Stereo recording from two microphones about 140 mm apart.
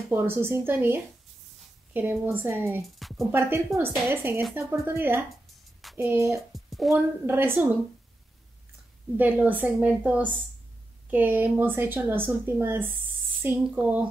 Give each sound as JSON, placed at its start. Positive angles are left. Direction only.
{"t": 0.1, "sound": "a woman's voice", "side_deg": -15}
{"t": 3.0, "sound": "a sound", "side_deg": 0}
{"t": 3.3, "sound": "a woman's voice", "side_deg": -15}
{"t": 5.9, "sound": "music", "side_deg": -20}
{"t": 6.5, "sound": "music", "side_deg": 0}
{"t": 7.2, "sound": "a woman's voice", "side_deg": -15}
{"t": 9.1, "sound": "a woman's voice", "side_deg": -10}